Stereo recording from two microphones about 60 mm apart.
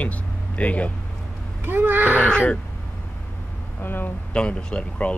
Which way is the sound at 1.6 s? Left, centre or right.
Right.